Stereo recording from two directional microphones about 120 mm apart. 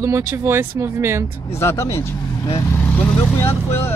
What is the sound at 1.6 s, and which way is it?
Speech, 20° left (ahead or behind).